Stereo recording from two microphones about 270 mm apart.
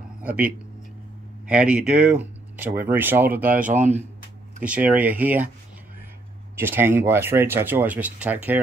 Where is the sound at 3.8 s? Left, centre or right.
Right.